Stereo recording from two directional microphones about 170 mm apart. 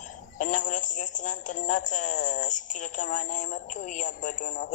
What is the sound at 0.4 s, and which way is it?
Speech, 50° left (ahead or behind).